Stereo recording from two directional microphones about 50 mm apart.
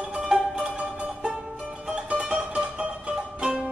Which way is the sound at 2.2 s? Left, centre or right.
Centre.